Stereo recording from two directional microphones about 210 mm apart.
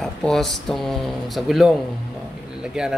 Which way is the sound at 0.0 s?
Centre (ahead or behind).